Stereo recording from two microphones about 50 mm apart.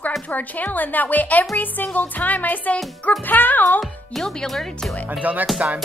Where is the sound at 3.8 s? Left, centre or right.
Centre.